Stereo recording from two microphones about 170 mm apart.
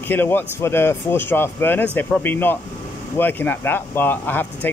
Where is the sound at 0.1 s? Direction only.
10° left (ahead or behind).